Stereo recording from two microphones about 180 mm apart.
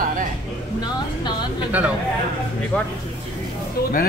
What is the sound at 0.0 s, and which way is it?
Music, 45° right (ahead or behind).